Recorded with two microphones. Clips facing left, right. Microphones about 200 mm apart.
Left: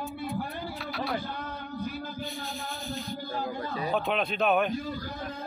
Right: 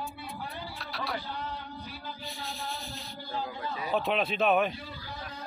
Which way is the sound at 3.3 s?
45° left (ahead or behind).